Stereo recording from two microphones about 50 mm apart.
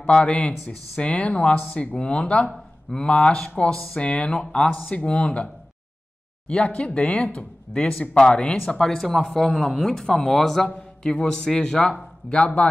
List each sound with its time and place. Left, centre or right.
0.0 s speech: centre
3.7 s speech: centre
4.0 s speech: left
6.4 s speech: centre